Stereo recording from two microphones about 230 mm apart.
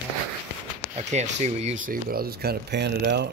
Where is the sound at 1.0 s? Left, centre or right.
Right.